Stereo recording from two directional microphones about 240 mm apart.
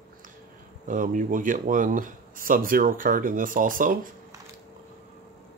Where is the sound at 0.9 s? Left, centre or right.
Right.